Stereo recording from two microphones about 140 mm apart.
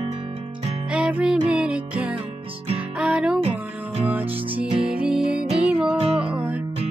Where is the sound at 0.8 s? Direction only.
10° right (ahead or behind).